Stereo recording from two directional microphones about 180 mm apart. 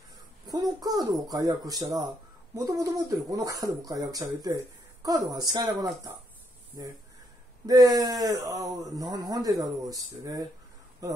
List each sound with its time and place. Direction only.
0.5 s a sound: 20° right (ahead or behind)
1.3 s speech: 20° right (ahead or behind)
7.6 s speech: 20° right (ahead or behind)